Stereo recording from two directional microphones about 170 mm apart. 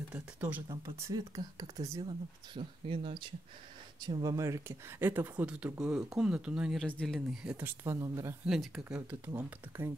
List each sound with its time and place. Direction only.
0.1 s speech: 10° right (ahead or behind)
1.0 s speech: 20° right (ahead or behind); by 7.2 s 5° left (ahead or behind)
7.2 s speech: 5° right (ahead or behind)
8.5 s speech: centre (ahead or behind)